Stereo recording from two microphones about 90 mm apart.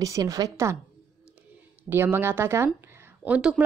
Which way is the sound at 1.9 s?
25° right (ahead or behind).